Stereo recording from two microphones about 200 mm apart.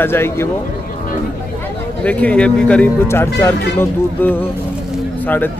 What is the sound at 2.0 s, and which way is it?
Speech, 5° left (ahead or behind).